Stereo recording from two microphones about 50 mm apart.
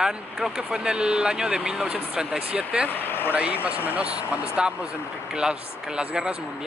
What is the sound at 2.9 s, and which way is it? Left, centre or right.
Speech, left.